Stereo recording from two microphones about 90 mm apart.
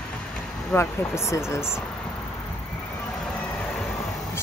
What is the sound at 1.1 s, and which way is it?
Speech, 30° left (ahead or behind).